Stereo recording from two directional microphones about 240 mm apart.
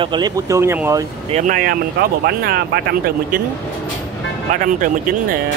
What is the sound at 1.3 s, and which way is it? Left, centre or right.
Speech, right.